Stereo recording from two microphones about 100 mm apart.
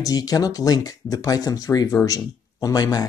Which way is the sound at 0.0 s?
35° left (ahead or behind).